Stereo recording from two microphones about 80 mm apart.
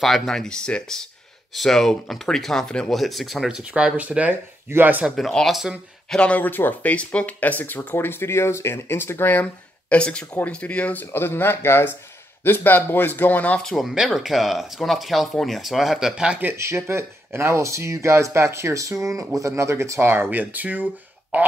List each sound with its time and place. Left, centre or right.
0.0 s speech: centre
3.4 s speech: centre
5.5 s speech: centre
6.0 s speech: centre
13.7 s speech: centre
16.5 s speech: right